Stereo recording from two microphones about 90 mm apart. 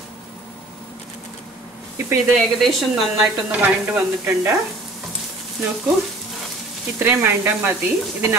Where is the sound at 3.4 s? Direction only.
15° right (ahead or behind).